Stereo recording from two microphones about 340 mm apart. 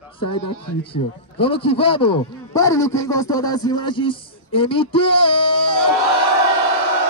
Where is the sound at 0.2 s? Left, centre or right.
Left.